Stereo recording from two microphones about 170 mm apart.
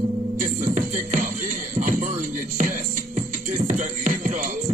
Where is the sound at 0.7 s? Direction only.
50° right (ahead or behind).